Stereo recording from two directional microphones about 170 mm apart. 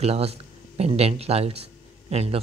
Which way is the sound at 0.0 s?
35° right (ahead or behind).